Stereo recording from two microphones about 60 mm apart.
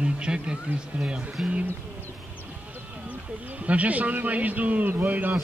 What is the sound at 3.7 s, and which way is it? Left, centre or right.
A man's voice, right.